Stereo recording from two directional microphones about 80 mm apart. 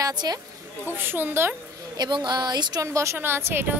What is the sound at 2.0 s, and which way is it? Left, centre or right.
Speech, right.